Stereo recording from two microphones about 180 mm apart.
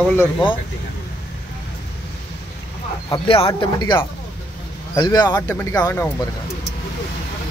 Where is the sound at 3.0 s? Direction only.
30° left (ahead or behind).